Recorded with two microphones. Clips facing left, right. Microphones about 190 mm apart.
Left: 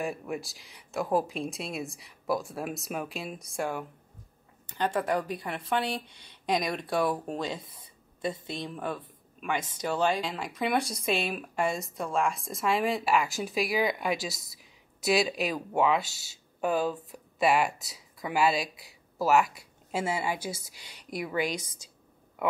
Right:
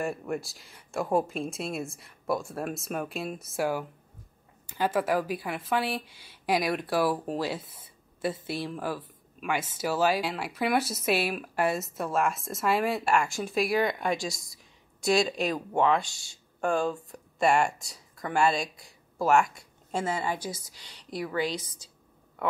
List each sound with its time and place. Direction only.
0.0 s speech: centre (ahead or behind)